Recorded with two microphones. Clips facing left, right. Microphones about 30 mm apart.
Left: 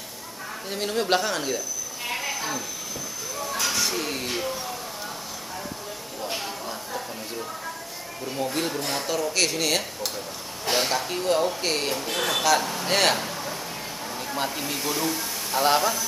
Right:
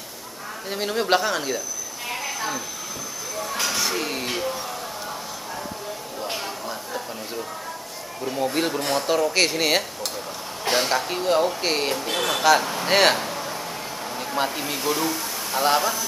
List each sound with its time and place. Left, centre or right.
0.7 s speech: centre
2.3 s train: centre
3.6 s music: centre
6.3 s a sound: centre
8.3 s a man's voice: centre